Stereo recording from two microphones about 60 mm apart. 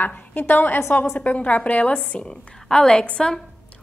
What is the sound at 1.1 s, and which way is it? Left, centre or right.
A woman's voice, left.